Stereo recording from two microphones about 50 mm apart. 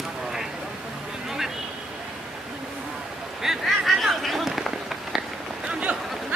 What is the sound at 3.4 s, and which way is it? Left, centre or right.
Run, centre.